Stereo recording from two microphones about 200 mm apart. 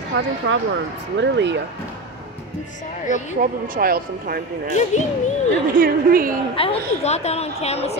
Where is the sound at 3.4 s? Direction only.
45° right (ahead or behind).